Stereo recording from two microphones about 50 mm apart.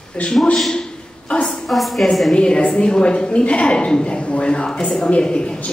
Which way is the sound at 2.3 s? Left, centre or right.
Centre.